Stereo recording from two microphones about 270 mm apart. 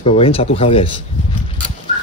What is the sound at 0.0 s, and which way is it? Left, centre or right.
A man's voice, left.